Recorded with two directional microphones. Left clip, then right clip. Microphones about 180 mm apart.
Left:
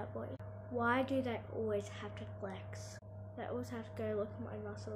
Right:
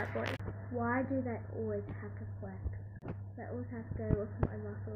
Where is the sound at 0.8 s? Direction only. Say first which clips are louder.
Left 1 dB; 15° left (ahead or behind).